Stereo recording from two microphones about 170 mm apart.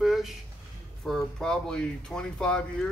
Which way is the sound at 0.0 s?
Centre (ahead or behind).